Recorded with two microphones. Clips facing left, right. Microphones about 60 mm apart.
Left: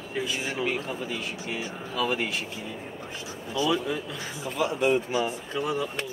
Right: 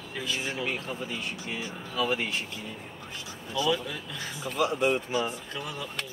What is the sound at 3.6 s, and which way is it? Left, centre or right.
Speech, centre.